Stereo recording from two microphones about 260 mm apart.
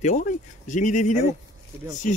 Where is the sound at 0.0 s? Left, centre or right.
Left.